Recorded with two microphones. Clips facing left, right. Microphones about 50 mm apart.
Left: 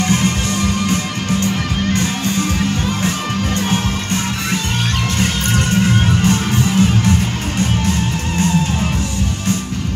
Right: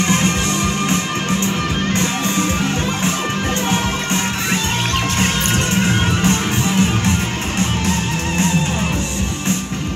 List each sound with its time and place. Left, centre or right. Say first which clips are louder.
0.0 s music: even; right
3.7 s music: even; right